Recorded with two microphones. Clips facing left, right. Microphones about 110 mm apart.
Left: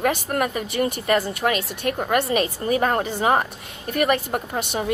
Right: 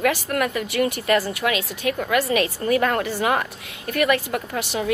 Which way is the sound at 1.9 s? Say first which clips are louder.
Even; 45° left (ahead or behind).